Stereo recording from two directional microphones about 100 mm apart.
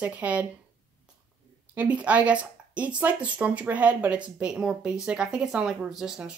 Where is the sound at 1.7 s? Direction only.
15° right (ahead or behind).